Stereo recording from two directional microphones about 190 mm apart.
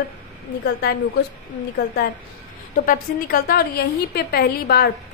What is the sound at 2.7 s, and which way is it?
A woman's voice, 50° left (ahead or behind).